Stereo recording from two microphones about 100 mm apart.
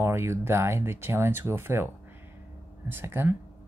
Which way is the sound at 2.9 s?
20° right (ahead or behind).